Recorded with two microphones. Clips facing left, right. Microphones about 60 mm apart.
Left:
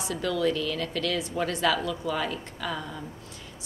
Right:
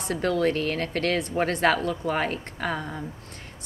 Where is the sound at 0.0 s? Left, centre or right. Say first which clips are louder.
Right 3 dB; right.